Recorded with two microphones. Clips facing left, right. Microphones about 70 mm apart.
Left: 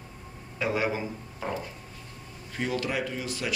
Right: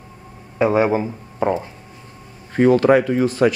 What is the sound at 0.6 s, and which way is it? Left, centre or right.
Speech, right.